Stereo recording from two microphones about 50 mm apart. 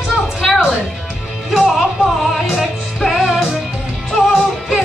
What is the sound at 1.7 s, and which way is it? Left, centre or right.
Music, centre.